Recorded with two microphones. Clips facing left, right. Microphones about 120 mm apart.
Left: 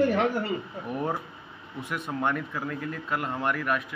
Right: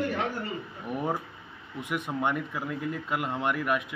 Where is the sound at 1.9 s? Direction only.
15° right (ahead or behind).